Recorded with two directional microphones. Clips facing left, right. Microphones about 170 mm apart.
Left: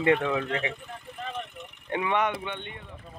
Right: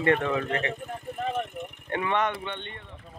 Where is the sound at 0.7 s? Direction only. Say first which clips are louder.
Right 6 dB; 50° right (ahead or behind).